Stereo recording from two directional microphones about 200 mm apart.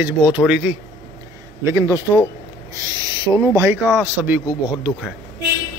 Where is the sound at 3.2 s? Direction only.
15° right (ahead or behind).